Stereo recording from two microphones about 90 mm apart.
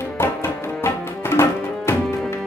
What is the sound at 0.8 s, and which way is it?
Music, 30° left (ahead or behind).